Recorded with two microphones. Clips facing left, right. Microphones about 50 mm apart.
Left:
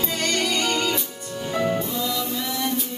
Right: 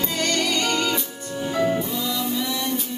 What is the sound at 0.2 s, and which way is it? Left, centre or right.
Music, left.